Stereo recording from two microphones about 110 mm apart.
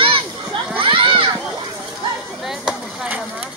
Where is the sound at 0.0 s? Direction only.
50° right (ahead or behind).